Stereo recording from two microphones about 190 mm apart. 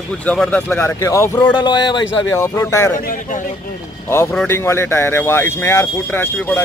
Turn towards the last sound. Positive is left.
turn(degrees=10)  # may be behind; listen again after turning